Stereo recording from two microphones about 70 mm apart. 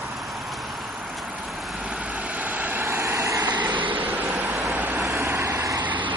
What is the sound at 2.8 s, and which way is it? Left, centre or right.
Vehicle, right.